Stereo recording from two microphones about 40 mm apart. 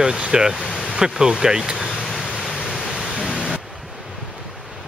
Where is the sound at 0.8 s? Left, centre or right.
Centre.